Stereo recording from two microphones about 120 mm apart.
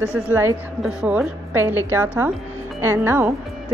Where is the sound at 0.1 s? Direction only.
20° right (ahead or behind).